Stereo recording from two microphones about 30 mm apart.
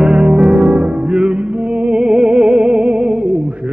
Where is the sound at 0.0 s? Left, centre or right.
Right.